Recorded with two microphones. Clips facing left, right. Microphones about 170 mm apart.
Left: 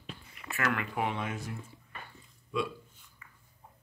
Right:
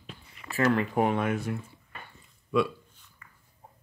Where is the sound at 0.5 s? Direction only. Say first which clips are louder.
Right 8 dB; 35° right (ahead or behind).